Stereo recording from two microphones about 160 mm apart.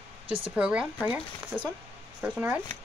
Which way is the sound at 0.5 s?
5° right (ahead or behind).